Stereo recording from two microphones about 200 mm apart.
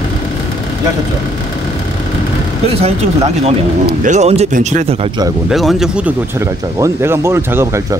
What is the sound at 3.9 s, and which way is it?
Speech, 40° right (ahead or behind).